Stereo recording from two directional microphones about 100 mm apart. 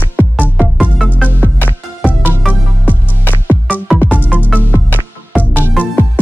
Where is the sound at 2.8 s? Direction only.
20° left (ahead or behind).